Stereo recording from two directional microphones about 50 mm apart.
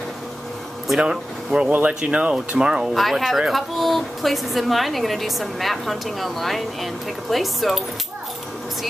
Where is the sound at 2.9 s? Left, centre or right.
Centre.